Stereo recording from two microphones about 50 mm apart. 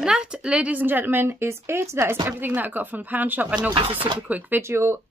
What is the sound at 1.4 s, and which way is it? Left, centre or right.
Speech, right.